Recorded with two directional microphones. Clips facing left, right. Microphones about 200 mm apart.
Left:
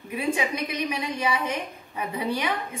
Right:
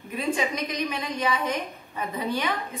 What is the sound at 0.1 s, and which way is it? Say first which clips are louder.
A woman's voice: even; 10° left (ahead or behind).